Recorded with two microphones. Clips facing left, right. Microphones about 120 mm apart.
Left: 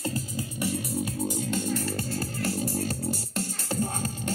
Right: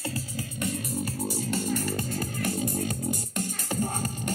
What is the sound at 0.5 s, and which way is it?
Music, 10° left (ahead or behind).